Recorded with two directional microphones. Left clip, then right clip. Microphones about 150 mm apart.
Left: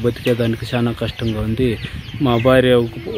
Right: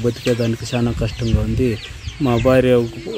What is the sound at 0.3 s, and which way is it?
Speech, 15° left (ahead or behind).